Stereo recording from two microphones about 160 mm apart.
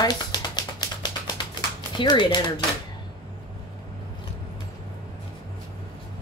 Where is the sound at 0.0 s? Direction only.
25° left (ahead or behind).